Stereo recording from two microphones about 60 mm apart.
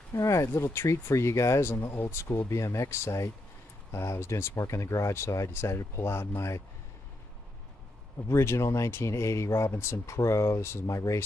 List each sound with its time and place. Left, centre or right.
0.2 s speech: left
8.3 s speech: left